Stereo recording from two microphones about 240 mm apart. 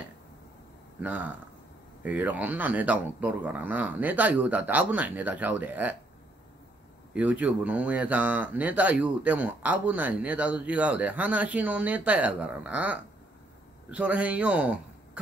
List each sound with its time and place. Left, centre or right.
1.0 s speech: centre
7.2 s speech: centre